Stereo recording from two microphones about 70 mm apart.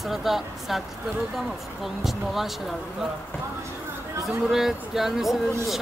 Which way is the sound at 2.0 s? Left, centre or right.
Centre.